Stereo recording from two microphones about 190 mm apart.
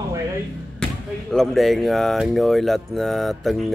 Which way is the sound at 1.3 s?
Centre (ahead or behind).